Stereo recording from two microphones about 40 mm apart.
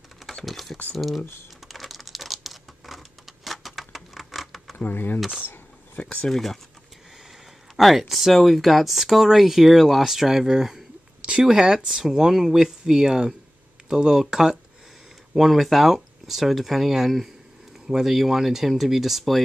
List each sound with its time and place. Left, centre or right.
0.3 s typing: centre
0.9 s speech: centre
1.7 s computer keyboard: centre
4.7 s speech: left
5.9 s speech: left
6.2 s speech: centre
7.7 s speech: centre
11.1 s speech: right
15.3 s speech: centre